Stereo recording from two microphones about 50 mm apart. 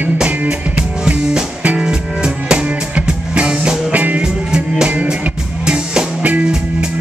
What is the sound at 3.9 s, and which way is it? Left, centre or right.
Music, right.